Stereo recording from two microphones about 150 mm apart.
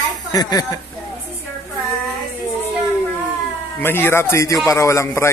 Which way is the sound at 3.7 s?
15° left (ahead or behind).